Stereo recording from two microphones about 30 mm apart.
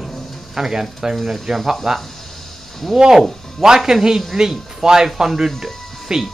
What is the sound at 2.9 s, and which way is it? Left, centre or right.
Speech, centre.